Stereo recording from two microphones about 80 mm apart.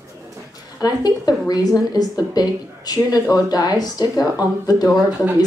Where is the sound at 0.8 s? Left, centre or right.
Left.